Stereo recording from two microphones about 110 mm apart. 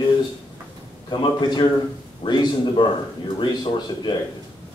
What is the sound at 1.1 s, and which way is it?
A man's voice, 40° left (ahead or behind).